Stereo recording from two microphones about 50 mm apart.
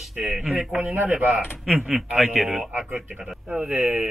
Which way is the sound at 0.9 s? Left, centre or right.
Right.